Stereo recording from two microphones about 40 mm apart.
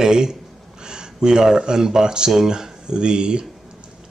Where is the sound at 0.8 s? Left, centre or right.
Centre.